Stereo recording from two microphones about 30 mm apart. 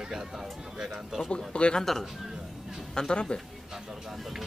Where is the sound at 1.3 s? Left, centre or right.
Left.